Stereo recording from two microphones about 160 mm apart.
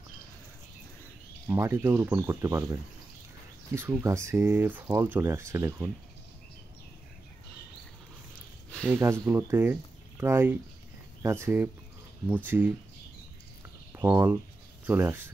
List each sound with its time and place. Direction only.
1.5 s speech: 15° right (ahead or behind)
4.0 s speech: 20° right (ahead or behind)
8.8 s speech: 15° right (ahead or behind)
13.9 s speech: 15° right (ahead or behind)